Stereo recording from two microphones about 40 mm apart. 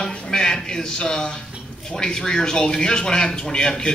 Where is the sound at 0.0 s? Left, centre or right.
Centre.